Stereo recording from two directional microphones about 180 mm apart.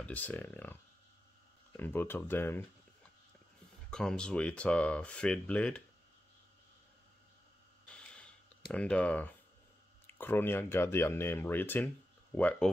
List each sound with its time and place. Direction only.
0.0 s speech: 10° left (ahead or behind)
1.8 s speech: 10° left (ahead or behind)
3.9 s speech: 5° left (ahead or behind)
7.9 s a sound: 5° left (ahead or behind)
10.0 s speech: 10° left (ahead or behind)